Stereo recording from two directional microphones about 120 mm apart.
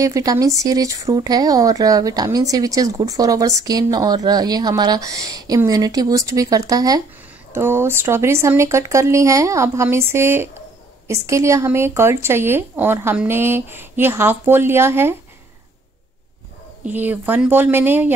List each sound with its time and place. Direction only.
0.0 s speech: 30° right (ahead or behind)
7.5 s speech: 20° right (ahead or behind)
16.8 s speech: 15° right (ahead or behind)